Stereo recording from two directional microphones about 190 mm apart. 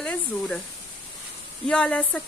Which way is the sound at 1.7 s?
5° left (ahead or behind).